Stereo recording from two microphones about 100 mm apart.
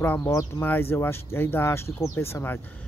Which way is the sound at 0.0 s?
25° left (ahead or behind).